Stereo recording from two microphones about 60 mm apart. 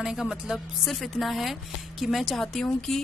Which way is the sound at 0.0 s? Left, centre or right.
Centre.